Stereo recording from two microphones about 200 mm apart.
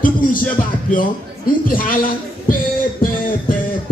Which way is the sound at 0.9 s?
45° left (ahead or behind).